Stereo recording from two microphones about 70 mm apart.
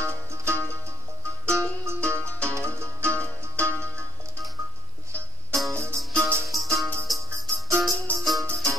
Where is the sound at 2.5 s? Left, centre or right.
Right.